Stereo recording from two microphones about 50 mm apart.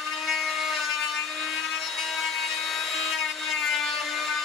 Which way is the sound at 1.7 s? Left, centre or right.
Centre.